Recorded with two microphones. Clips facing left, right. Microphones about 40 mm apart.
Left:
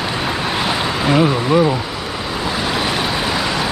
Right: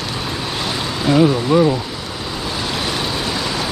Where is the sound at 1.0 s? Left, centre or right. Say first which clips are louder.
Right 2 dB; left.